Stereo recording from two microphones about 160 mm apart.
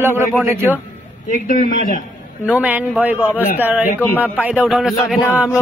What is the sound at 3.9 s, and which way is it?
Speech, 15° left (ahead or behind).